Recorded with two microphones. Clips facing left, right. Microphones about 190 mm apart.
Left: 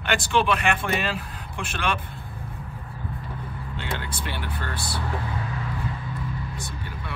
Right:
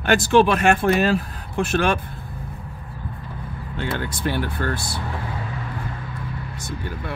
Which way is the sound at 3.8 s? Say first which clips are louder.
Right 6 dB; 45° right (ahead or behind).